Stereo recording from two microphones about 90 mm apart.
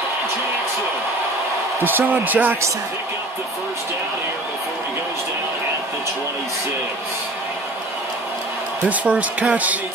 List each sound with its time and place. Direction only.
1.8 s speech: 20° right (ahead or behind)
8.8 s speech: 15° right (ahead or behind)